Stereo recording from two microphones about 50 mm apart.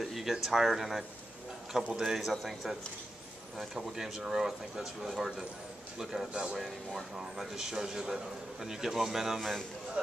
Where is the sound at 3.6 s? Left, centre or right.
Centre.